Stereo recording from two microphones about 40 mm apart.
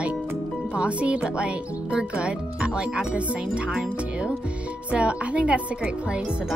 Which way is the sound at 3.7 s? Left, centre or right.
Right.